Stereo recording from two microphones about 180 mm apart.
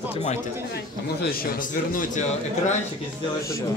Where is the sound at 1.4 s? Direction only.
50° left (ahead or behind).